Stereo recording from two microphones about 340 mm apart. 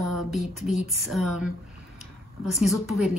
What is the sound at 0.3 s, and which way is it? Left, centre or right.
Speech, centre.